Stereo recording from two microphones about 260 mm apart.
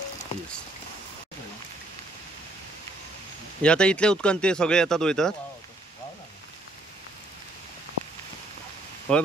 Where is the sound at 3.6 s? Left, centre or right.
Centre.